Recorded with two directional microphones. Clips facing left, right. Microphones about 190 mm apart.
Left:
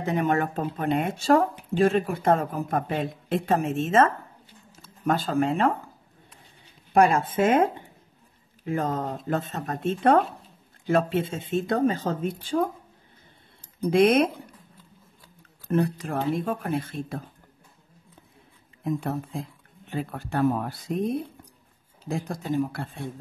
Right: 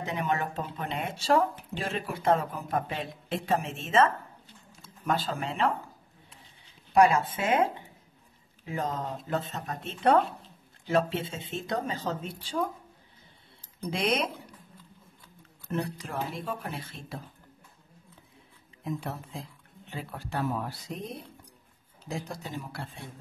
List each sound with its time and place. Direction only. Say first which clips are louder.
0.0 s a man's voice: left 6 dB; 50° left (ahead or behind)
6.9 s a man's voice: left 2 dB; 50° left (ahead or behind)
13.8 s a man's voice: left 10 dB; 55° left (ahead or behind)
15.7 s a man's voice: left 8 dB; 50° left (ahead or behind)
18.9 s a man's voice: left 7 dB; 50° left (ahead or behind)